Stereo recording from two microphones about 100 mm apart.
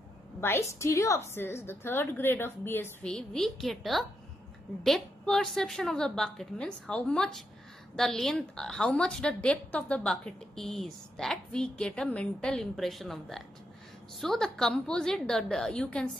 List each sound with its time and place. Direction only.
0.4 s a woman's voice: 25° left (ahead or behind)
3.0 s a woman's voice: 5° left (ahead or behind)